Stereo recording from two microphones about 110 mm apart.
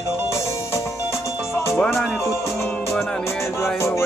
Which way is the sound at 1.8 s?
Centre (ahead or behind).